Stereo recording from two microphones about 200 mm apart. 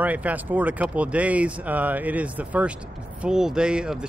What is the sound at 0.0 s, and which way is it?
Speech, 5° right (ahead or behind).